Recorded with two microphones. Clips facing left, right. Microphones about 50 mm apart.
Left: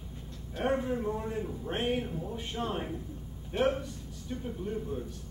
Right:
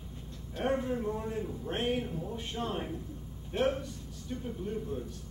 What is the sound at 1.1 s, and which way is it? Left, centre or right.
A man's voice, centre.